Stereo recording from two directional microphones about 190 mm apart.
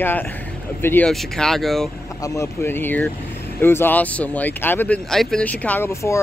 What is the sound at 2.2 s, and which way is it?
Speech, 15° left (ahead or behind).